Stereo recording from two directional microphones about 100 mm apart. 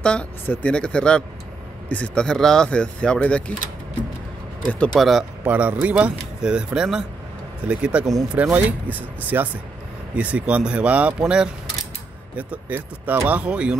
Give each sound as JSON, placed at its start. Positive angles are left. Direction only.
{"t": 0.0, "sound": "speech", "side_deg": 10}
{"t": 4.6, "sound": "speech", "side_deg": 10}
{"t": 4.9, "sound": "speech", "side_deg": 0}
{"t": 5.4, "sound": "speech", "side_deg": -15}